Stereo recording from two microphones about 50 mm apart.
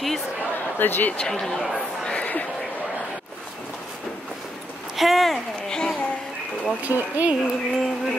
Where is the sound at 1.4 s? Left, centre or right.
Centre.